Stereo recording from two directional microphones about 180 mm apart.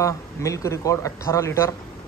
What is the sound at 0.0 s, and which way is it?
Speech, 15° left (ahead or behind).